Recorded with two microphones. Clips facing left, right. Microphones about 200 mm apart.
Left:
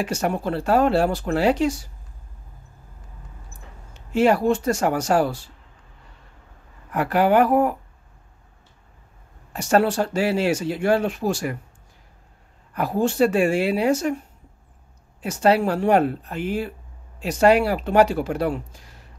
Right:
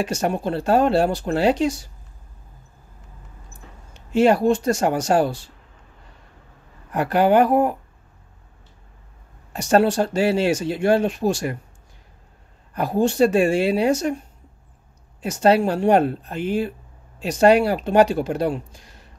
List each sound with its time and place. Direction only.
0.1 s speech: 20° right (ahead or behind)
4.1 s speech: 20° right (ahead or behind)
6.9 s speech: 25° right (ahead or behind)
9.5 s speech: 25° right (ahead or behind)
12.7 s speech: 20° right (ahead or behind)
15.2 s speech: 20° right (ahead or behind)